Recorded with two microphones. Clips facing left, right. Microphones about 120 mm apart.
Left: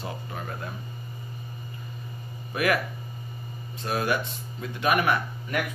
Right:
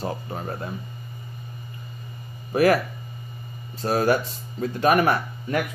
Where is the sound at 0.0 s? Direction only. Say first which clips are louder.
Right 5 dB; 35° right (ahead or behind).